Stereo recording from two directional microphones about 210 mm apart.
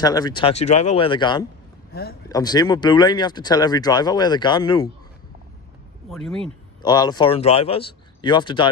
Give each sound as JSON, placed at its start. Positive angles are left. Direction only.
{"t": 0.0, "sound": "speech", "side_deg": 20}
{"t": 6.0, "sound": "speech", "side_deg": 0}
{"t": 6.8, "sound": "speech", "side_deg": 20}